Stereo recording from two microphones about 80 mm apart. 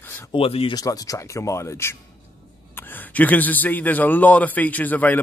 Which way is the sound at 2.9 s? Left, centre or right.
Left.